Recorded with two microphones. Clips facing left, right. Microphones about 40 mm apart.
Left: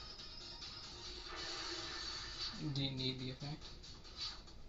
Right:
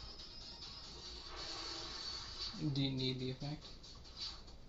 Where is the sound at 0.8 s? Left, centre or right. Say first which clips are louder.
Left 1 dB; left.